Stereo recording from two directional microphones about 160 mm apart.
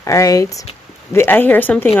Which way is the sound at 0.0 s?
20° left (ahead or behind).